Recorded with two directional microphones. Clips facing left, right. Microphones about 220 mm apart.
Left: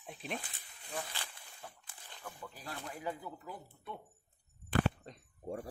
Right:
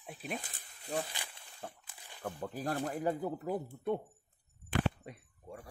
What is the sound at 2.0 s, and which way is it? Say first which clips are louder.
Crumpling: right 1 dB; 10° right (ahead or behind).